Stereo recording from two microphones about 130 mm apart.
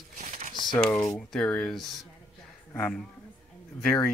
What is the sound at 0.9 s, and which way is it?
Speech, 25° left (ahead or behind).